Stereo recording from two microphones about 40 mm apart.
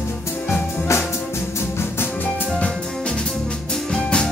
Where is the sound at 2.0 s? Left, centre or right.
Left.